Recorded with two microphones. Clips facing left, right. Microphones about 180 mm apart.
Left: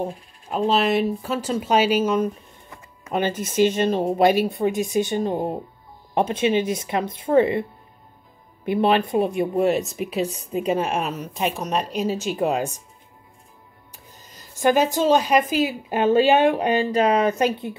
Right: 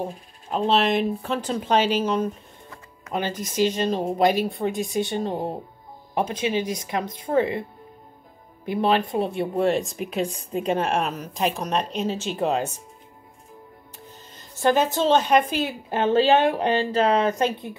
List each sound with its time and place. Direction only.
0.5 s speech: 5° left (ahead or behind)
2.7 s music: 20° left (ahead or behind)
3.5 s speech: 20° left (ahead or behind)
8.6 s speech: 20° left (ahead or behind)
14.6 s speech: 10° left (ahead or behind)